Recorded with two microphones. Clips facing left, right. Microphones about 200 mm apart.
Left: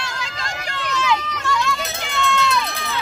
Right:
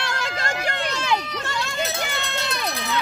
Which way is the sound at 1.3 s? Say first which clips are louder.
Left 5 dB; 35° right (ahead or behind).